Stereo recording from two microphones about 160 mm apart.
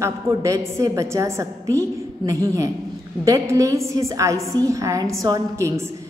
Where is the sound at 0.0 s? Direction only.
20° right (ahead or behind).